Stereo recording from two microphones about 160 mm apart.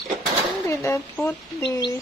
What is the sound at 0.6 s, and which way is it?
Speech, 20° left (ahead or behind).